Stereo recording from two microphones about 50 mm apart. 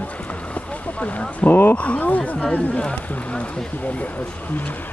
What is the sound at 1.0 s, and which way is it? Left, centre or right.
Speech, left.